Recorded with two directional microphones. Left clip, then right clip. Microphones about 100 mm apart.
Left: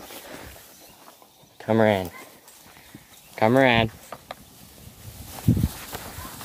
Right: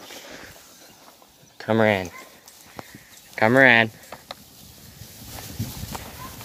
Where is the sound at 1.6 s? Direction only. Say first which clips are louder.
Even; 10° left (ahead or behind).